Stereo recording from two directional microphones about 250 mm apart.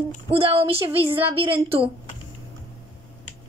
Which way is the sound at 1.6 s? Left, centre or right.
Right.